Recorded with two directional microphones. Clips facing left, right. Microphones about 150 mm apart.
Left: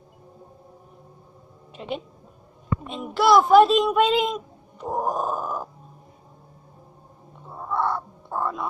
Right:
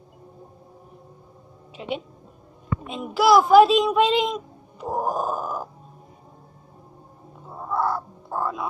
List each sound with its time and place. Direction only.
1.8 s speech: centre (ahead or behind)
7.4 s crow: 5° right (ahead or behind)